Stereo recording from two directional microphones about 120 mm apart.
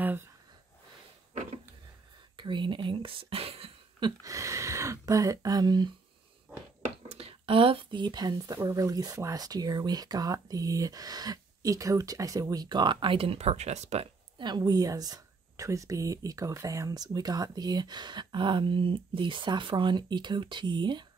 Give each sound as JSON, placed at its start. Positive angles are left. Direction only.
{"t": 2.3, "sound": "whispering", "side_deg": -40}
{"t": 4.2, "sound": "speech", "side_deg": -25}
{"t": 6.8, "sound": "a sound", "side_deg": -60}
{"t": 8.5, "sound": "speech", "side_deg": -30}
{"t": 14.4, "sound": "speech", "side_deg": -35}